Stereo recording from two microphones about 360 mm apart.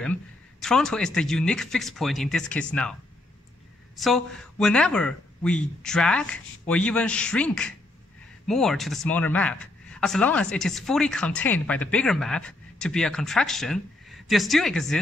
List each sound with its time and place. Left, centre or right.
0.0 s speech: centre
4.0 s speech: centre